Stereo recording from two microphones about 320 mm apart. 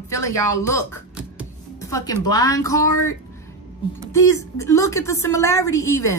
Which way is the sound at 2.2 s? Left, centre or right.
Centre.